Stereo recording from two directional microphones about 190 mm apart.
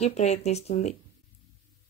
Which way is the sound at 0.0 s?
35° left (ahead or behind).